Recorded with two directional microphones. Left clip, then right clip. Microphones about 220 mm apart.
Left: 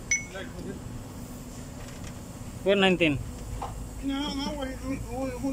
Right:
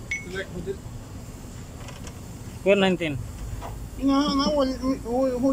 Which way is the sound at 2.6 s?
Centre (ahead or behind).